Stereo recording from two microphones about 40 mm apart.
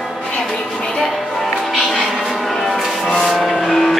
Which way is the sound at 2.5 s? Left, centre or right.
Centre.